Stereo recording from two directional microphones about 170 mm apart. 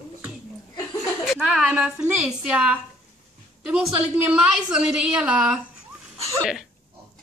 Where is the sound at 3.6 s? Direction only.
5° right (ahead or behind).